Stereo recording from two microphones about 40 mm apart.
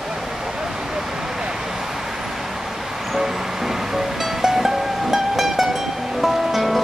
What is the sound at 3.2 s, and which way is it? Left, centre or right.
Music, centre.